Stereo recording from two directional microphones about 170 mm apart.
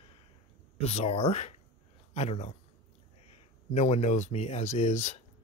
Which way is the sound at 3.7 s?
40° left (ahead or behind).